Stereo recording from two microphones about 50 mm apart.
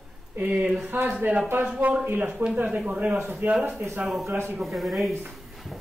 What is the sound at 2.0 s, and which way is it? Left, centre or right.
Speech, right.